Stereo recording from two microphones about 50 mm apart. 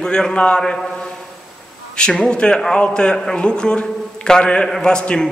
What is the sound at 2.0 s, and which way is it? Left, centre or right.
A man's voice, centre.